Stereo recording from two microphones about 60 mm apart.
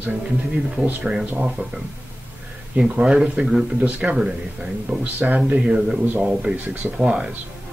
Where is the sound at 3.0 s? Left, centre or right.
Centre.